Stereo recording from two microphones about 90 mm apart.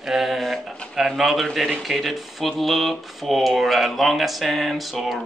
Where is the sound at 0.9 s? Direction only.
Centre (ahead or behind).